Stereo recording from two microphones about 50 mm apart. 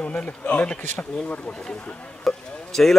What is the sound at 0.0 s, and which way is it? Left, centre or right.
Speech, left.